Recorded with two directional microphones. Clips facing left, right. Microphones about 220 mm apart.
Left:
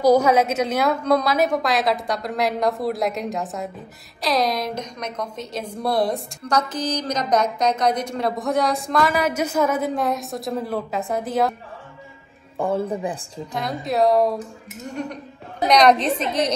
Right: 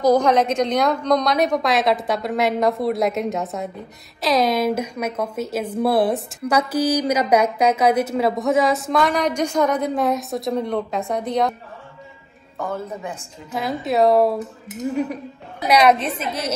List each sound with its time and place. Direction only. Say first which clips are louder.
0.0 s a woman's voice: even; 10° left (ahead or behind)
12.5 s a man's voice: left 5 dB; 30° left (ahead or behind)
13.5 s a woman's voice: right 3 dB; 5° right (ahead or behind)